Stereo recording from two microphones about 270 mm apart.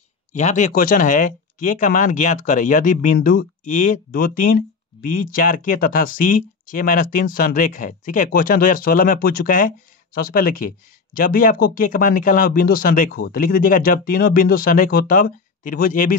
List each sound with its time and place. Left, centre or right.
0.3 s speech: left